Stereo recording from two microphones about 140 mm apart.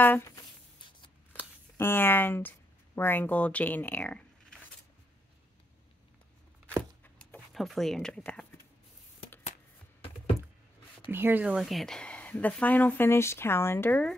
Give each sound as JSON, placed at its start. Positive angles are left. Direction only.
{"t": 0.0, "sound": "a woman's voice", "side_deg": 15}
{"t": 0.4, "sound": "a sound", "side_deg": 35}
{"t": 1.8, "sound": "a woman's voice", "side_deg": 15}
{"t": 7.2, "sound": "speech", "side_deg": 5}
{"t": 11.1, "sound": "a woman's voice", "side_deg": -15}